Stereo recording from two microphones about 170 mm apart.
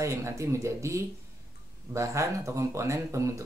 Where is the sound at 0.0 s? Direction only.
15° right (ahead or behind).